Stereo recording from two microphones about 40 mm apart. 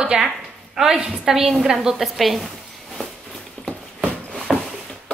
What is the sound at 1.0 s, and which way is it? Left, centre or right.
Speech, right.